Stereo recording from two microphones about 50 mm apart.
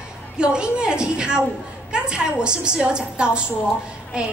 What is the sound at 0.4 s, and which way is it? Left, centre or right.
A woman's voice, centre.